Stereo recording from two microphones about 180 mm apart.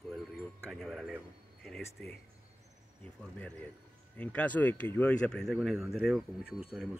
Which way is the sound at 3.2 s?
5° left (ahead or behind).